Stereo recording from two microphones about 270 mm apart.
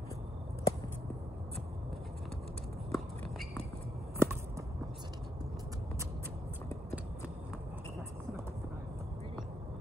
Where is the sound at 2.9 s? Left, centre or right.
Centre.